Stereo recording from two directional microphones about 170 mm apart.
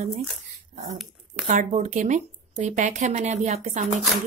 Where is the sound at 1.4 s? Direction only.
45° right (ahead or behind).